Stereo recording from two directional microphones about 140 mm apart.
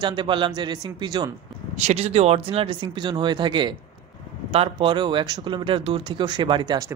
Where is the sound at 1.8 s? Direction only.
50° right (ahead or behind).